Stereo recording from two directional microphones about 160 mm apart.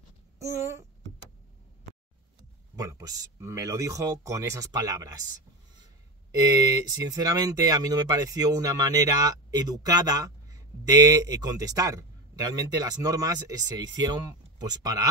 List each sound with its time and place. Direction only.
2.7 s speech: 20° right (ahead or behind)
6.3 s speech: 25° right (ahead or behind)